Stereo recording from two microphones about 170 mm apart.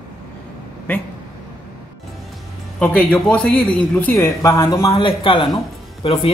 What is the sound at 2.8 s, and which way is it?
Speech, 10° left (ahead or behind).